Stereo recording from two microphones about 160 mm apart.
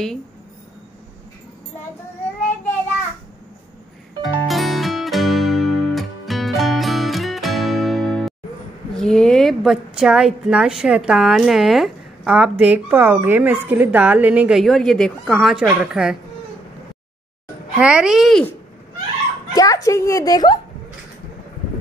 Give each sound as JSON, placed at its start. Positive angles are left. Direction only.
{"t": 4.2, "sound": "music", "side_deg": 0}
{"t": 8.9, "sound": "a woman's voice", "side_deg": 5}
{"t": 17.7, "sound": "a woman's voice", "side_deg": -5}
{"t": 19.5, "sound": "a woman's voice", "side_deg": 20}